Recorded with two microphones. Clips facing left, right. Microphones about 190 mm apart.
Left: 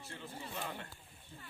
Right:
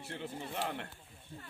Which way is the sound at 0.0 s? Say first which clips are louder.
Right 5 dB; 65° right (ahead or behind).